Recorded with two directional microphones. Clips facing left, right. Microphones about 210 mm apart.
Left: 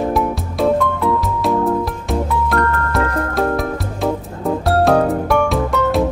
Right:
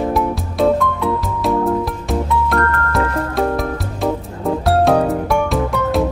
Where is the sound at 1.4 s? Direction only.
Centre (ahead or behind).